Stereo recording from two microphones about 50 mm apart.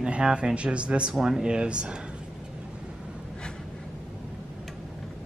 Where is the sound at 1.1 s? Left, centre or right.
Centre.